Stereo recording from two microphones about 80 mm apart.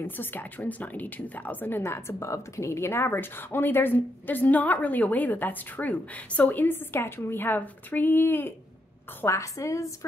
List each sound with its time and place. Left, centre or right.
0.0 s a woman's voice: left
1.8 s a woman's voice: left
9.2 s a woman's voice: left